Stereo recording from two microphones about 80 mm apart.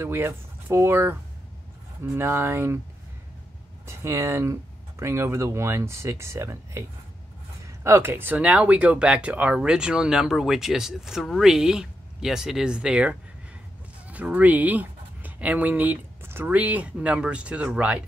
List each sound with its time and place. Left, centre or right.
0.0 s speech: right
2.1 s speech: right
3.8 s speech: right
16.4 s speech: centre